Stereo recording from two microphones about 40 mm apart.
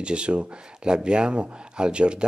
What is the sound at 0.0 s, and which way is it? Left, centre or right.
Speech, right.